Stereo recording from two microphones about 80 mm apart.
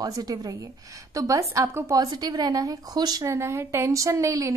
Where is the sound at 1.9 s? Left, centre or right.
Right.